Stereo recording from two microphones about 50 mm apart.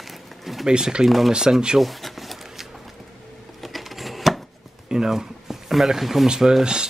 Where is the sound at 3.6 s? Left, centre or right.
Centre.